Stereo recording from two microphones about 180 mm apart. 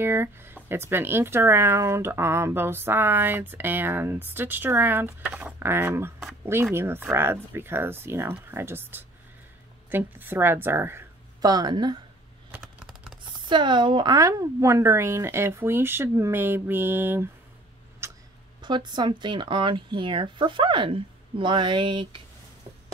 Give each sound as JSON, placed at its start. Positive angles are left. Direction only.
{"t": 0.0, "sound": "speech", "side_deg": -15}
{"t": 12.4, "sound": "computer keyboard", "side_deg": -10}
{"t": 13.5, "sound": "speech", "side_deg": -25}
{"t": 18.0, "sound": "cough", "side_deg": -15}
{"t": 18.6, "sound": "speech", "side_deg": -25}